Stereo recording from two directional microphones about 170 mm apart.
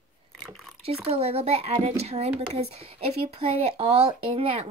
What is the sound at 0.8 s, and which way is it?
Speech, 35° right (ahead or behind).